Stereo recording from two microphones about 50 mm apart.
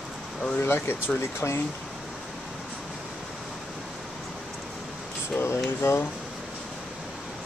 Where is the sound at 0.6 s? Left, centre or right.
Left.